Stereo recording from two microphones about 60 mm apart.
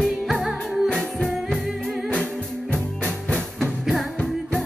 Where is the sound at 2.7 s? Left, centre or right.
Centre.